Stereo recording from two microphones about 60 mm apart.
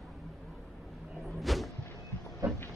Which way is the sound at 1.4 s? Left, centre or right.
Centre.